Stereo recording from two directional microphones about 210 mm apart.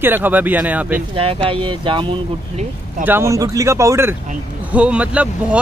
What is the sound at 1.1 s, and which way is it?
Speech, 25° right (ahead or behind).